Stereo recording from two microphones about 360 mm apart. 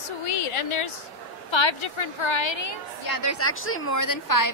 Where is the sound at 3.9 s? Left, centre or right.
Left.